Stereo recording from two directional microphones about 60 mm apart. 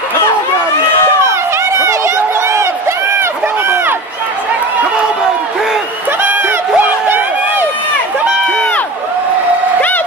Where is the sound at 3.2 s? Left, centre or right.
Right.